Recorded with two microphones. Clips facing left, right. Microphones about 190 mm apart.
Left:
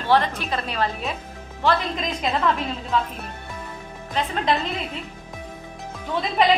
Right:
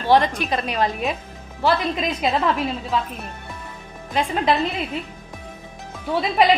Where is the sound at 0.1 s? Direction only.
15° right (ahead or behind).